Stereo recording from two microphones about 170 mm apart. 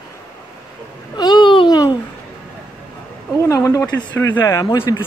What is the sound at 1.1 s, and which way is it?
Babbling, 25° left (ahead or behind).